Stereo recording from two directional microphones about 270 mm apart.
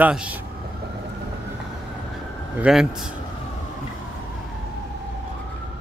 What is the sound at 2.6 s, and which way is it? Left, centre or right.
Speech, centre.